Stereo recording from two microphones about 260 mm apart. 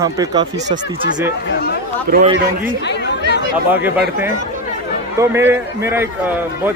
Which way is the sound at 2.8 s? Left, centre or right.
Left.